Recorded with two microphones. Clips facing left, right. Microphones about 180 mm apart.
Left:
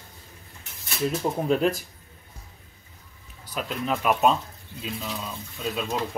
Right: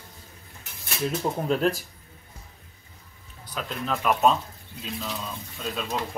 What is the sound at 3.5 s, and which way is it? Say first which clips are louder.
Speech: left 2 dB; 5° left (ahead or behind).